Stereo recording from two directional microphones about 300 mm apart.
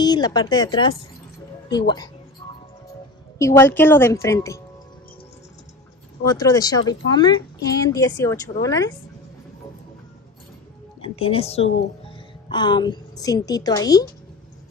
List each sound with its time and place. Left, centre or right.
0.0 s speech: centre
3.3 s speech: centre
6.2 s speech: centre
11.0 s speech: centre